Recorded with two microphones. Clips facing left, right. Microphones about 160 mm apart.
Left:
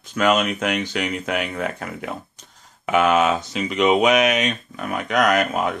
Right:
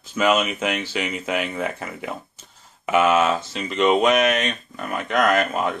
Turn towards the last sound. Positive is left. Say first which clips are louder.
# left 1 dB
turn(degrees=0)  # may be behind; listen again after turning